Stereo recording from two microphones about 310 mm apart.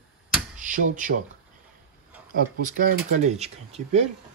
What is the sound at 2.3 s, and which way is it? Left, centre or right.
Speech, right.